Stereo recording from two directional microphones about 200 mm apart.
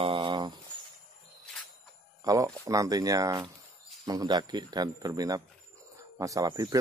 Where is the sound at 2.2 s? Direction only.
15° right (ahead or behind).